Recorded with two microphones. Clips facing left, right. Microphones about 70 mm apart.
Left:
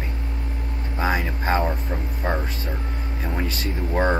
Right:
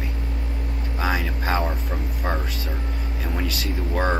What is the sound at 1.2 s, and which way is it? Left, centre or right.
Speech, left.